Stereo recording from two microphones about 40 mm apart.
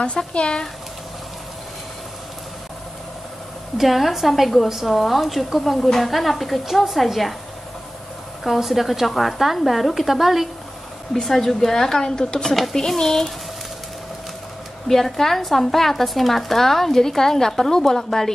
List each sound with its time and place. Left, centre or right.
0.3 s speech: left
3.7 s a woman's voice: centre
8.5 s a woman's voice: centre
12.4 s a woman's voice: centre
14.9 s speech: centre